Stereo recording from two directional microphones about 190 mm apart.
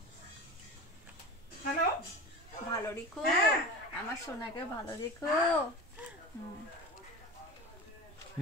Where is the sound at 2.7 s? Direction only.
15° left (ahead or behind).